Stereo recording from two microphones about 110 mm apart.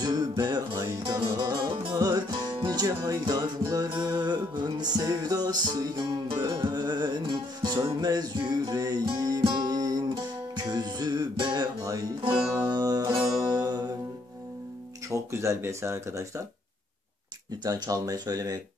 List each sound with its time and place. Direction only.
0.0 s music: 35° right (ahead or behind)
12.2 s music: 45° right (ahead or behind)
15.0 s speech: 25° right (ahead or behind)
17.6 s music: 35° right (ahead or behind)